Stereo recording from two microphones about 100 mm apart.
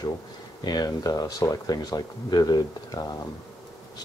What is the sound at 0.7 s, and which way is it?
Speech, 40° left (ahead or behind).